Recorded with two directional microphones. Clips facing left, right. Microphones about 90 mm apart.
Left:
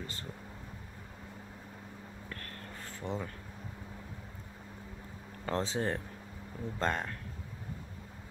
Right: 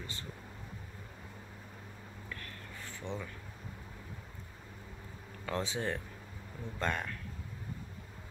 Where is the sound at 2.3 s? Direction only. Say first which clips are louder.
Left 1 dB; 45° left (ahead or behind).